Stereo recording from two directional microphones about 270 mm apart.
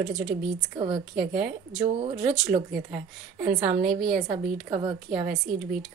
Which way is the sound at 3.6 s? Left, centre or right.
Right.